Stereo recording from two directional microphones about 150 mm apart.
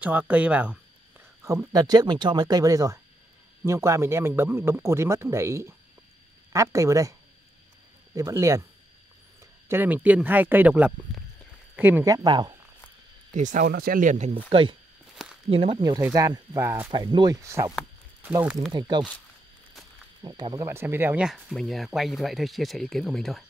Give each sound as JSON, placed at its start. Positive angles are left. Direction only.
{"t": 0.0, "sound": "a man's voice", "side_deg": -10}
{"t": 1.4, "sound": "a man's voice", "side_deg": -20}
{"t": 9.7, "sound": "a man's voice", "side_deg": -15}
{"t": 12.0, "sound": "speech", "side_deg": -25}
{"t": 13.3, "sound": "speech", "side_deg": -55}
{"t": 14.5, "sound": "speech", "side_deg": -35}
{"t": 15.2, "sound": "a sound", "side_deg": 0}
{"t": 15.5, "sound": "speech", "side_deg": -40}
{"t": 15.8, "sound": "speech", "side_deg": -25}
{"t": 16.9, "sound": "speech", "side_deg": -30}
{"t": 18.4, "sound": "a man's voice", "side_deg": -5}
{"t": 18.7, "sound": "speech", "side_deg": -30}
{"t": 20.2, "sound": "speech", "side_deg": -25}
{"t": 20.6, "sound": "speech", "side_deg": -15}